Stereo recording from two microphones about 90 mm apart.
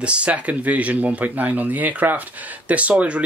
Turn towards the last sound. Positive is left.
turn(degrees=-15)  # may be behind; listen again after turning